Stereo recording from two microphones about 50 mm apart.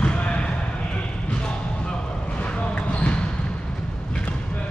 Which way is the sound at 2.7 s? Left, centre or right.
Left.